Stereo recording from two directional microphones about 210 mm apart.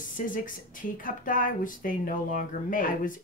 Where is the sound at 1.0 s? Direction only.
40° left (ahead or behind).